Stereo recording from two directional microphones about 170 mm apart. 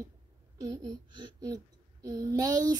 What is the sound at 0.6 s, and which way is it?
A child's voice, 25° right (ahead or behind).